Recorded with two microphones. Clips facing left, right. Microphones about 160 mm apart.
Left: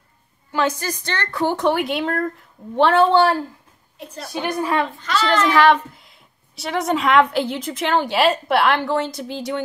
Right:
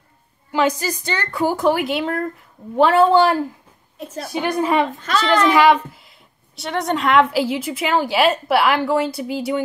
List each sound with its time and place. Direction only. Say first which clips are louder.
0.5 s a woman's voice: right 3 dB; 10° right (ahead or behind)
4.0 s a woman's voice: right 4 dB; 50° right (ahead or behind)
4.3 s a woman's voice: right 3 dB; 20° right (ahead or behind)